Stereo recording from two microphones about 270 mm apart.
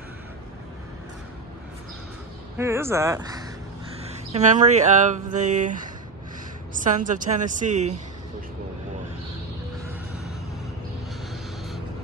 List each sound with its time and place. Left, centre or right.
2.5 s speech: centre
4.0 s speech: right
6.7 s a sound: right
7.1 s speech: right